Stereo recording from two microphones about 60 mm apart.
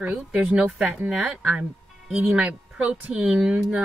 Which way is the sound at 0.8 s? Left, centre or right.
Centre.